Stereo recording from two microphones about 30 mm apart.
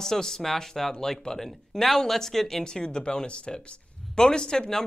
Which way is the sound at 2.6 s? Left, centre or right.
Left.